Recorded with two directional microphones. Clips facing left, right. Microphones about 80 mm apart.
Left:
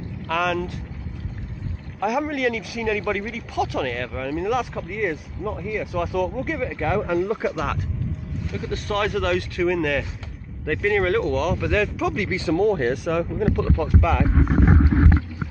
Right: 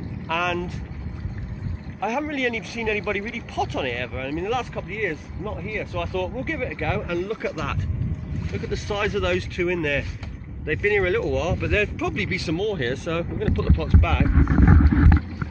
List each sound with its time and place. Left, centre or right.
0.3 s speech: centre
2.0 s speech: centre
7.0 s speech: left
8.5 s speech: centre
12.3 s speech: left
12.7 s speech: centre